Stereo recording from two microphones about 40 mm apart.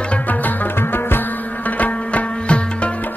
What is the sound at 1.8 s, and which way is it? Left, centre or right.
Music, left.